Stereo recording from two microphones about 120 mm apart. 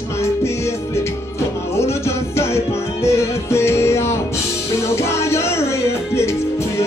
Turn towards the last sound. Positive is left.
turn(degrees=20)  # may be behind; listen again after turning